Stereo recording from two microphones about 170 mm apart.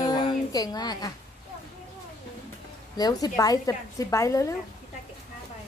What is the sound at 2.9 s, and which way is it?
Speech, 20° left (ahead or behind).